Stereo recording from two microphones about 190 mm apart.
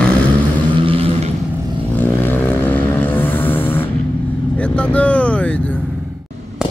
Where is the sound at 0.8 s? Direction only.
30° right (ahead or behind).